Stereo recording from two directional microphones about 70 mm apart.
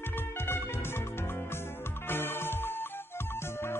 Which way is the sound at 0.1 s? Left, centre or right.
Left.